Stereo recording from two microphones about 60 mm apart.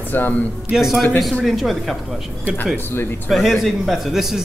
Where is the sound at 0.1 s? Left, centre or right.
Left.